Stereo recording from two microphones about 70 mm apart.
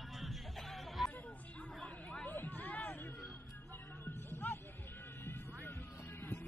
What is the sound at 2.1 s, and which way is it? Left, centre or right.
Chatter, centre.